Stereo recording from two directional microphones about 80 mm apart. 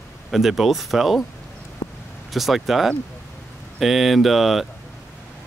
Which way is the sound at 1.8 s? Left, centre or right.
Left.